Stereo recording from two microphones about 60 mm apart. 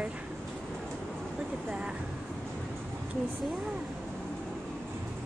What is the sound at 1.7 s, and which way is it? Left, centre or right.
Speech, centre.